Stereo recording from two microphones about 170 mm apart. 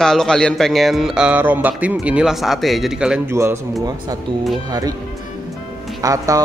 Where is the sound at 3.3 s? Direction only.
15° right (ahead or behind).